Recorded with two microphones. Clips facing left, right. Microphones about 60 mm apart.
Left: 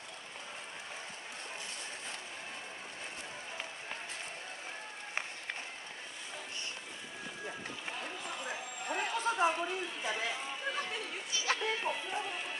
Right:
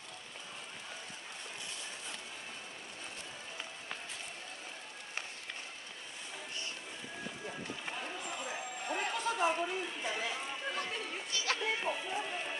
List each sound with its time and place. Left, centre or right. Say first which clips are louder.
7.8 s run: left 1 dB; centre
8.8 s music: left 1 dB; centre
9.2 s chatter: left 3 dB; left
9.5 s a sound: even; centre
11.6 s music: even; centre
12.1 s music: even; centre